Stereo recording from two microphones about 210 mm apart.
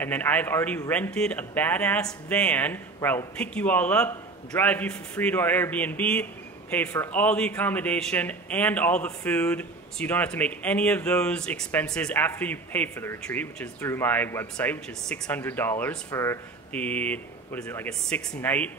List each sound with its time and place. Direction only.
0.0 s a man's voice: 10° left (ahead or behind)